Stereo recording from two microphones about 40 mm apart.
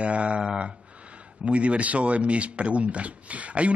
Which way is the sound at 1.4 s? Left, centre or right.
Right.